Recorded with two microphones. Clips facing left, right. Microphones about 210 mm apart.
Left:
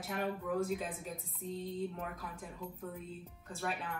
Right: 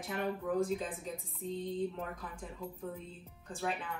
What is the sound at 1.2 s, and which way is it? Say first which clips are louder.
Speech: right 3 dB; centre (ahead or behind).